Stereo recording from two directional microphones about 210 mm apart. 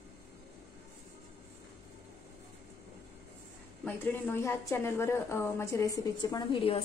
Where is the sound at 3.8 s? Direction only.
10° left (ahead or behind); by 6.8 s 25° left (ahead or behind).